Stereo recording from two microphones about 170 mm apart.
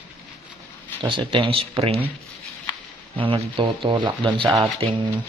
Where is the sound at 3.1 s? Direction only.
30° right (ahead or behind).